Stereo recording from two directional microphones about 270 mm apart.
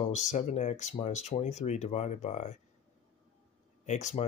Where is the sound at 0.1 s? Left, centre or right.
Left.